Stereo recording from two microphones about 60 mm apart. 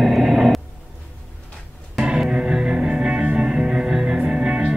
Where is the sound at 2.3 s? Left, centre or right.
Centre.